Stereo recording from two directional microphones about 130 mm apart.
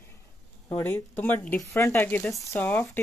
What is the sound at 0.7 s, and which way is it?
Speech, 10° left (ahead or behind).